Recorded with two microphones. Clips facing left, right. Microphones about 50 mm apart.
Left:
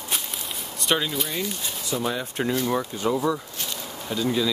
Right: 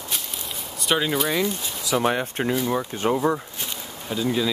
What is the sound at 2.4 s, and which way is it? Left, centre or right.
Speech, centre.